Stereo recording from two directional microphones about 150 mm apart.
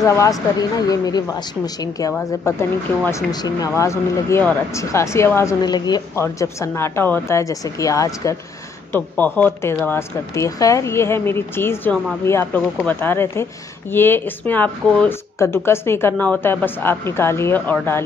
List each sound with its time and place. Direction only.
0.0 s speech: 20° left (ahead or behind)